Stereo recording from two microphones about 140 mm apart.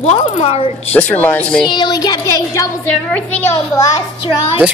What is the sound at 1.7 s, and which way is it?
Music, 30° left (ahead or behind).